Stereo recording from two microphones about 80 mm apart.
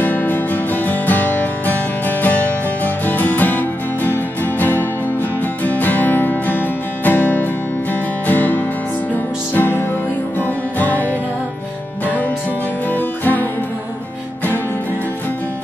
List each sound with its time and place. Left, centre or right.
0.0 s music: left
12.9 s music: left